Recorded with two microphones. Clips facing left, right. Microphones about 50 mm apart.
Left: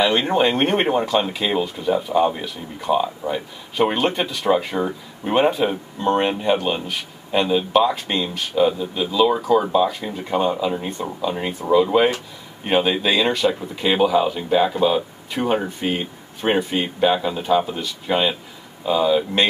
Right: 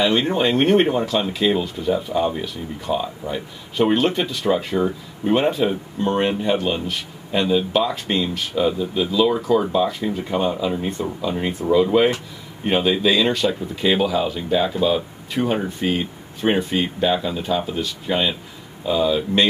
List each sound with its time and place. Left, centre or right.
0.2 s speech: centre
10.3 s speech: centre
11.1 s speech: centre